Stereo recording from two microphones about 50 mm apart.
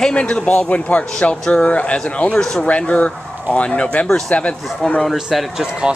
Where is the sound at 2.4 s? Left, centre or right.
Centre.